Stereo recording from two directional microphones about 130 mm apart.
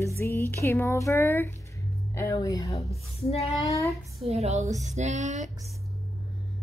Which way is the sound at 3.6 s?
25° left (ahead or behind).